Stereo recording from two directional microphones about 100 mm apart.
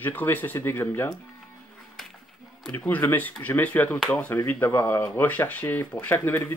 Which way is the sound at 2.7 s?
20° left (ahead or behind).